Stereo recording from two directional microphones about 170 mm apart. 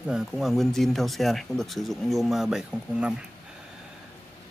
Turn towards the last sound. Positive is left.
turn(degrees=-5)  # may be behind; listen again after turning